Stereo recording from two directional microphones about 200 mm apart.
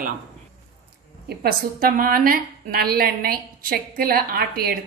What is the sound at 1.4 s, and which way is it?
A woman's voice, 50° right (ahead or behind).